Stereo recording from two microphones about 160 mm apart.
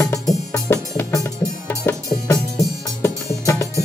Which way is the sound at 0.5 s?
15° left (ahead or behind).